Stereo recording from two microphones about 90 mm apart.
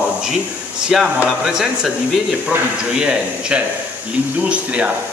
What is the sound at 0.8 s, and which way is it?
A man's voice, 10° right (ahead or behind).